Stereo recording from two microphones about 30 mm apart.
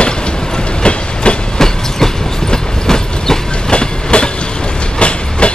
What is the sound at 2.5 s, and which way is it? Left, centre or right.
Train, left.